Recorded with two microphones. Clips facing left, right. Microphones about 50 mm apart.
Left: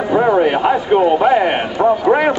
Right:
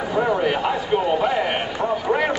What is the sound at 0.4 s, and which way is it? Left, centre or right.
Speech, left.